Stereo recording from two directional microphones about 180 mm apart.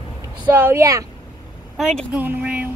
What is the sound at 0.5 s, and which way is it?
Speech, 15° right (ahead or behind).